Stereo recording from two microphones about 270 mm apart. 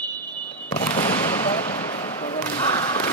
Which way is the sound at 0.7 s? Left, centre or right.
Centre.